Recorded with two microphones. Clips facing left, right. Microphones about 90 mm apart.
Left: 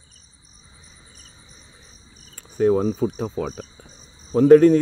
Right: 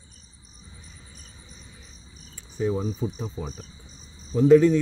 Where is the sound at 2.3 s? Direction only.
55° left (ahead or behind).